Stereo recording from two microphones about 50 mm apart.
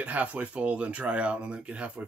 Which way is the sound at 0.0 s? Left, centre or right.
Right.